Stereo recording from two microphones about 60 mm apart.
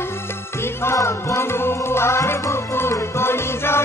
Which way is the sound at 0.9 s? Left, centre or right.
Left.